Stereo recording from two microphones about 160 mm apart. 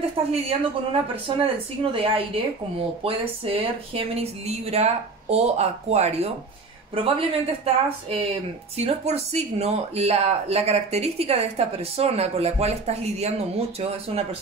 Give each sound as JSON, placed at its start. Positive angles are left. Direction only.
{"t": 0.2, "sound": "speech", "side_deg": -40}